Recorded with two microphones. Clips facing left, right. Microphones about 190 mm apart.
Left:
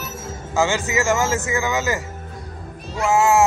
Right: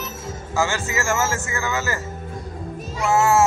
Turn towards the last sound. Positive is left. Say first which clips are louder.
# left 1 dB
turn(degrees=15)  # may be behind; listen again after turning